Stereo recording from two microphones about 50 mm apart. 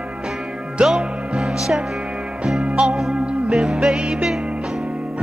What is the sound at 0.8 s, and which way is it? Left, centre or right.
Music, right.